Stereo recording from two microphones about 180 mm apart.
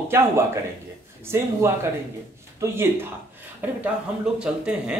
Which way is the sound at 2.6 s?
15° right (ahead or behind).